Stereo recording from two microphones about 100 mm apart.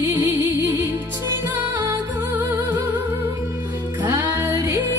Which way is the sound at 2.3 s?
20° right (ahead or behind).